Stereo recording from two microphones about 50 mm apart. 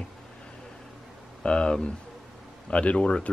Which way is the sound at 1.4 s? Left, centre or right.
Centre.